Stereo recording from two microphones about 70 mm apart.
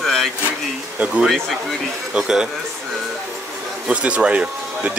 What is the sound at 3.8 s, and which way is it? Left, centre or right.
Speech, centre.